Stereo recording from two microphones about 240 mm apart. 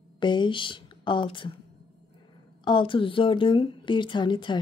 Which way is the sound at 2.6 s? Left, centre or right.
Centre.